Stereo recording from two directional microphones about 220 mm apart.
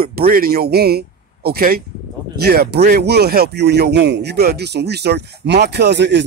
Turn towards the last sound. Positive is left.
turn(degrees=-50)  # may be behind; listen again after turning